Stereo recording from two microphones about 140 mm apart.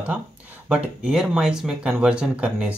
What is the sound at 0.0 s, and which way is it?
Speech, 10° right (ahead or behind).